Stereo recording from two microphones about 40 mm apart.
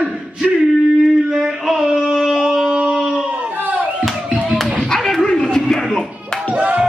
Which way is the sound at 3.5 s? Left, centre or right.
Right.